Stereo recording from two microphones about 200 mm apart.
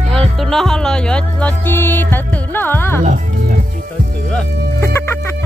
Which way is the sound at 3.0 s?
40° right (ahead or behind).